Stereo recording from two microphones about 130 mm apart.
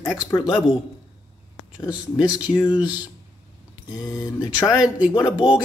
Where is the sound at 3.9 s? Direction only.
25° left (ahead or behind).